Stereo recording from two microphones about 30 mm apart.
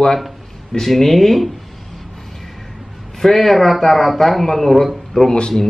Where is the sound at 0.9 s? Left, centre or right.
Centre.